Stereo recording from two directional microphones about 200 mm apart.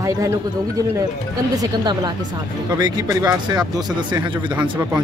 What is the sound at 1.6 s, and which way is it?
Speech, 20° right (ahead or behind).